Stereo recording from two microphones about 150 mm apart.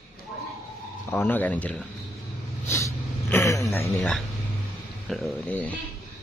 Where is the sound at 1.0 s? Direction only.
10° left (ahead or behind).